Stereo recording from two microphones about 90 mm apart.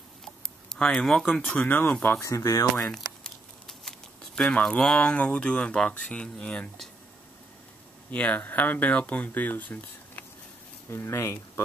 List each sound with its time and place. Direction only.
0.2 s a sound: 5° left (ahead or behind)
1.9 s speech: 15° left (ahead or behind)
2.2 s speech: 35° left (ahead or behind)
2.7 s crumpling: 5° left (ahead or behind)
4.4 s speech: 10° left (ahead or behind)
8.1 s speech: 15° left (ahead or behind)